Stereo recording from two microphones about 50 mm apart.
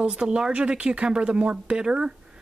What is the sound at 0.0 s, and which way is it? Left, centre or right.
Speech, centre.